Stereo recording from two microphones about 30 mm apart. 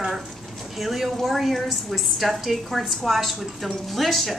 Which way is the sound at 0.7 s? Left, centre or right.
Centre.